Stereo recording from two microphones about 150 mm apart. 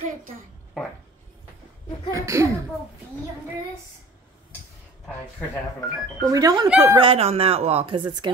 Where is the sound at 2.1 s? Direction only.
20° right (ahead or behind).